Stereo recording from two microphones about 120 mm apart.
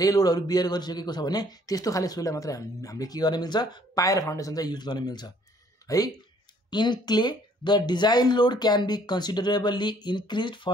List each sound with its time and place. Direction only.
0.0 s speech: 30° left (ahead or behind)